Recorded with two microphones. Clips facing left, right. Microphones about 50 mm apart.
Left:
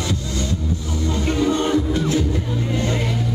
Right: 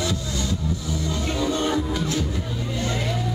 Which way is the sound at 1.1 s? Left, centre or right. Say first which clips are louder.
Left 6 dB; left.